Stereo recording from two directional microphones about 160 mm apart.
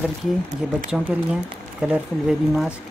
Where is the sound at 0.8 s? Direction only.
5° right (ahead or behind).